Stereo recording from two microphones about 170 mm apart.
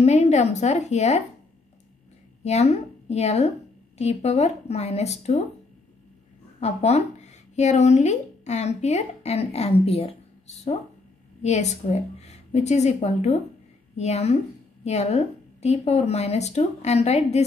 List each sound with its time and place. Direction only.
0.0 s a woman's voice: 40° left (ahead or behind)
2.4 s a woman's voice: 40° left (ahead or behind)
6.6 s a woman's voice: 40° left (ahead or behind)